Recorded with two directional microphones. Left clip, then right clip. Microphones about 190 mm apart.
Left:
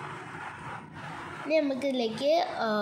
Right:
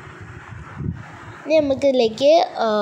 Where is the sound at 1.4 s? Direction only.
35° right (ahead or behind).